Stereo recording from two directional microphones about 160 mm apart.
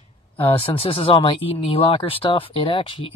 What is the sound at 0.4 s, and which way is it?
Speech, 35° left (ahead or behind).